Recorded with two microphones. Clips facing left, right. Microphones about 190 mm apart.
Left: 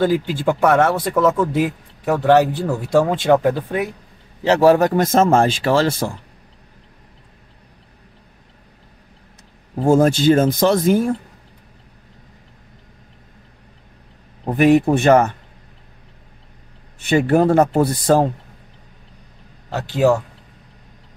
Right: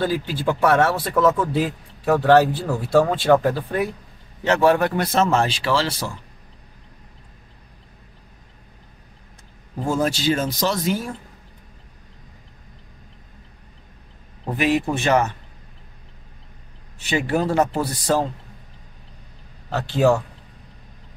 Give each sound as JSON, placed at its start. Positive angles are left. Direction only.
{"t": 0.0, "sound": "speech", "side_deg": 15}
{"t": 4.5, "sound": "speech", "side_deg": 35}
{"t": 9.8, "sound": "speech", "side_deg": 50}
{"t": 14.4, "sound": "speech", "side_deg": 50}
{"t": 17.0, "sound": "speech", "side_deg": 55}
{"t": 19.7, "sound": "speech", "side_deg": 15}